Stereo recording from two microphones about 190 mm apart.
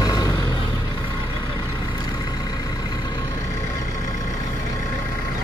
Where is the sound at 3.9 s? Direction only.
40° left (ahead or behind).